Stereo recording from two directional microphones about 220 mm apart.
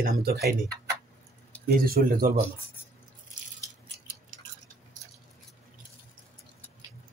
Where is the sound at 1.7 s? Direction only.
40° right (ahead or behind).